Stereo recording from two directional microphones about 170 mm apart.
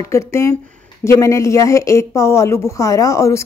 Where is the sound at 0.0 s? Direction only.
15° left (ahead or behind).